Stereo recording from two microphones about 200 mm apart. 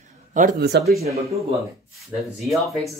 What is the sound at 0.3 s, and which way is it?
Speech, 40° right (ahead or behind).